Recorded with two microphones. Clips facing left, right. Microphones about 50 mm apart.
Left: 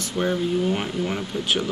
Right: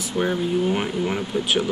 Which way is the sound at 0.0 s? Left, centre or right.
Centre.